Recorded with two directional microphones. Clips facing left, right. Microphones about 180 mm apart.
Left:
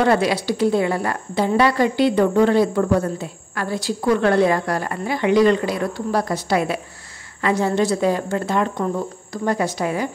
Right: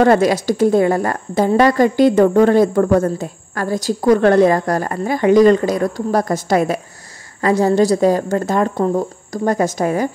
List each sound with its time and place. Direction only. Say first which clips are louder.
0.0 s a woman's voice: right 5 dB; 45° right (ahead or behind)